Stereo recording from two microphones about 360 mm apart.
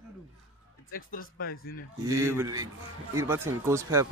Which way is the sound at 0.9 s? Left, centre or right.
Left.